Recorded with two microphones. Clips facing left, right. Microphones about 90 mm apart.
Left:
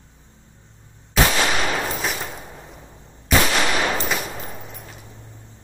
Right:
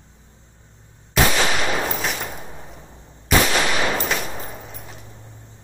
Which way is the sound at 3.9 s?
Centre (ahead or behind).